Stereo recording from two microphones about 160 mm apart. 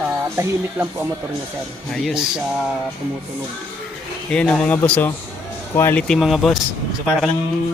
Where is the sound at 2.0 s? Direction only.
Centre (ahead or behind).